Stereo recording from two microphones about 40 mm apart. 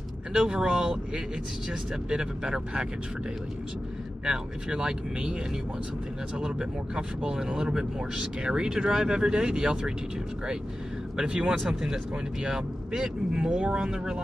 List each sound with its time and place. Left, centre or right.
0.3 s speech: right
4.2 s speech: centre